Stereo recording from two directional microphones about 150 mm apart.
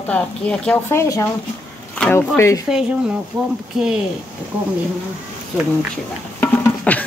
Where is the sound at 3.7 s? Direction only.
5° right (ahead or behind).